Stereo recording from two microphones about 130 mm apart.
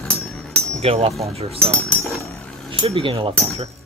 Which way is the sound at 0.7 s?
50° right (ahead or behind).